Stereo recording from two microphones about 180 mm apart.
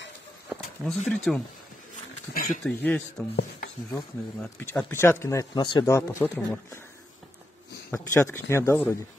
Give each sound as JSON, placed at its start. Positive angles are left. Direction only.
{"t": 0.5, "sound": "a sound", "side_deg": 0}
{"t": 1.0, "sound": "speech", "side_deg": 5}
{"t": 2.3, "sound": "speech", "side_deg": 50}
{"t": 2.6, "sound": "speech", "side_deg": 10}
{"t": 7.9, "sound": "speech", "side_deg": 15}